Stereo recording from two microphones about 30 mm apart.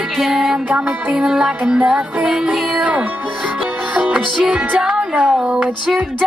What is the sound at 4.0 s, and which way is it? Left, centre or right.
Music, right.